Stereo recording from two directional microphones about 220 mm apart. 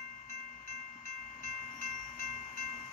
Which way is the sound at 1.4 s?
40° left (ahead or behind).